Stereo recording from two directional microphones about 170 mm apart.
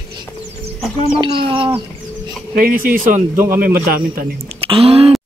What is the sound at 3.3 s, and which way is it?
Speech, 15° right (ahead or behind).